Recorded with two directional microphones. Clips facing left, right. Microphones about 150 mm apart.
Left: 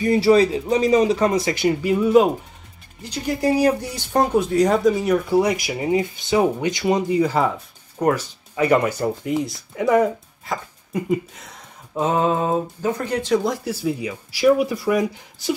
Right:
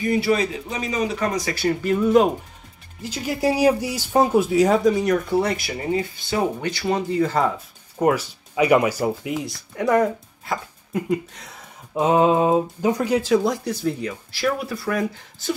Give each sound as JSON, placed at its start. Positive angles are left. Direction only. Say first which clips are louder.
{"t": 0.0, "sound": "speech", "louder": "left 5 dB", "side_deg": 30}
{"t": 3.0, "sound": "speech", "louder": "left 1 dB", "side_deg": -5}
{"t": 8.0, "sound": "speech", "louder": "even", "side_deg": -10}
{"t": 11.9, "sound": "speech", "louder": "right 3 dB", "side_deg": -15}